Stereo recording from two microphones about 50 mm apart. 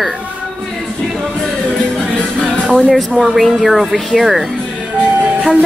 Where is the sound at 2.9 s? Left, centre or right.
Centre.